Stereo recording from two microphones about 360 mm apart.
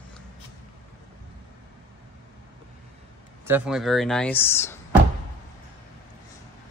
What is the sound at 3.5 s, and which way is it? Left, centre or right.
Speech, centre.